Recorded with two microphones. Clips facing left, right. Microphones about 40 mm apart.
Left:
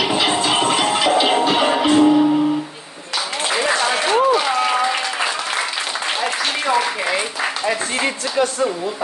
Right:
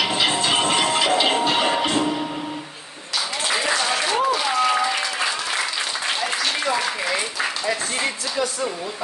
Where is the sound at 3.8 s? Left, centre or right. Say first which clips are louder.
Left 5 dB; left.